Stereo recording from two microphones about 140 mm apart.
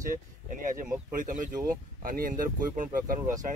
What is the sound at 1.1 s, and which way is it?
Speech, 70° right (ahead or behind).